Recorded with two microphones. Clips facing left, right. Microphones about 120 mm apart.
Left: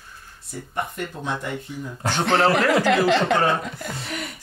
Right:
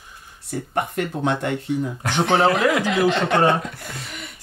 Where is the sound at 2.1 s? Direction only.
Centre (ahead or behind).